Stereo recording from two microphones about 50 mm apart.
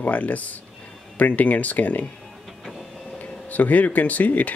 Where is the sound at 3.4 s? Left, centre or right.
Left.